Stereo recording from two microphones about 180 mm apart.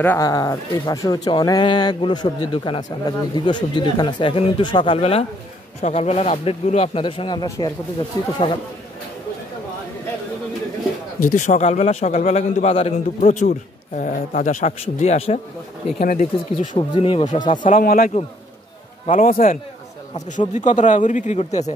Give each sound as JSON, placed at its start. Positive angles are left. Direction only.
{"t": 0.0, "sound": "speech", "side_deg": 10}
{"t": 0.3, "sound": "a man's voice", "side_deg": 20}
{"t": 11.1, "sound": "a man's voice", "side_deg": 45}
{"t": 16.0, "sound": "a man's voice", "side_deg": 45}
{"t": 16.7, "sound": "speech", "side_deg": 30}
{"t": 17.6, "sound": "a man's voice", "side_deg": 50}